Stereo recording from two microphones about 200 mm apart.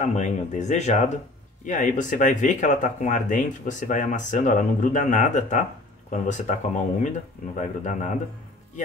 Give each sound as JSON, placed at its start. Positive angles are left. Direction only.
{"t": 0.0, "sound": "speech", "side_deg": 35}